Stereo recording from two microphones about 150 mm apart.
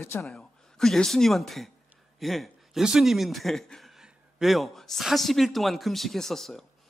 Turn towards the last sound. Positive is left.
turn(degrees=0)  # may be behind; listen again after turning